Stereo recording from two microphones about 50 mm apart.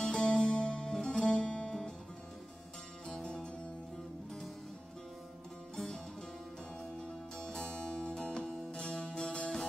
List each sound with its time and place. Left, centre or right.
0.0 s music: left
3.1 s music: centre
7.0 s music: centre